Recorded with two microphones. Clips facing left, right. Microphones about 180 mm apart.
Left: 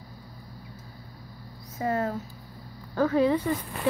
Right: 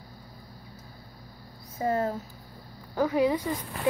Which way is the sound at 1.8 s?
30° right (ahead or behind).